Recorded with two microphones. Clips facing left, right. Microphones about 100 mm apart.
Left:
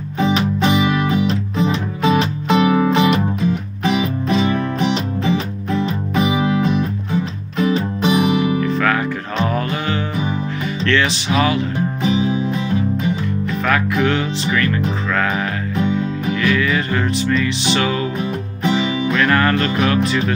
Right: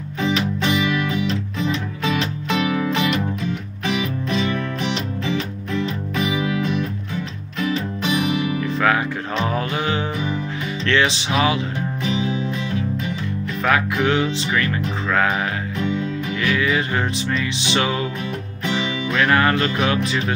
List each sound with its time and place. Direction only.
0.2 s music: 30° left (ahead or behind)
8.0 s music: 20° left (ahead or behind)
8.7 s music: 15° right (ahead or behind)
12.0 s music: 25° left (ahead or behind)
13.7 s music: 20° right (ahead or behind)
16.4 s music: 15° right (ahead or behind)
18.6 s music: 25° left (ahead or behind)
19.1 s music: 15° right (ahead or behind)